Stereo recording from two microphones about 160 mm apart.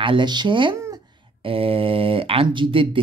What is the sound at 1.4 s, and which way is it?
Speech, 35° right (ahead or behind).